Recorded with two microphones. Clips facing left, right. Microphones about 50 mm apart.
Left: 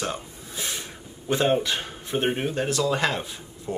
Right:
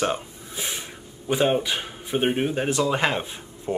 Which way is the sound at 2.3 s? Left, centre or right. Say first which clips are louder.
Right 2 dB; centre.